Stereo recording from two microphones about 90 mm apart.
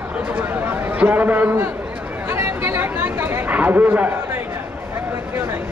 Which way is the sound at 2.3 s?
30° right (ahead or behind).